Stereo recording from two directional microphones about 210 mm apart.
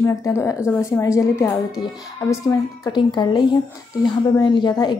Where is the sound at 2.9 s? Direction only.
20° left (ahead or behind).